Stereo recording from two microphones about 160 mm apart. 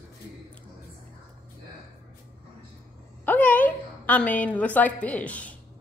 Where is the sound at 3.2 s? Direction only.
10° left (ahead or behind).